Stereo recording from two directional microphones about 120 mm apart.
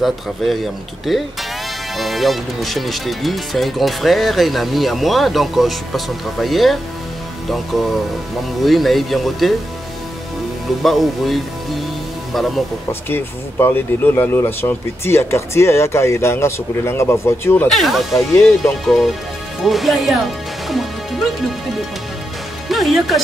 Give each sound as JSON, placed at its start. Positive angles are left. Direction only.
{"t": 0.0, "sound": "speech", "side_deg": 0}
{"t": 10.8, "sound": "speech", "side_deg": 0}
{"t": 13.1, "sound": "speech", "side_deg": 20}
{"t": 17.6, "sound": "speech", "side_deg": 0}
{"t": 22.7, "sound": "speech", "side_deg": 0}